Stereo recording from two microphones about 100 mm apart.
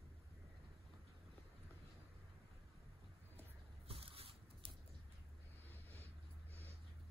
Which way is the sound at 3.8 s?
70° right (ahead or behind).